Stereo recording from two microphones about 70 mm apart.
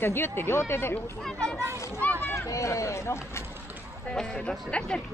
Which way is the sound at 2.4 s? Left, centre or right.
Left.